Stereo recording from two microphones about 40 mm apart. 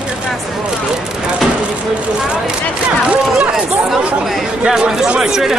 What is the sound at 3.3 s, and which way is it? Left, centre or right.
Speech, centre.